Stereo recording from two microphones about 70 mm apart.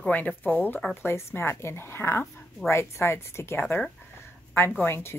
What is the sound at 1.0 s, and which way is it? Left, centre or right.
Speech, left.